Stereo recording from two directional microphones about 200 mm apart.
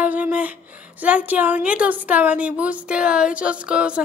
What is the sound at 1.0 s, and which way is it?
A woman's voice, 5° right (ahead or behind).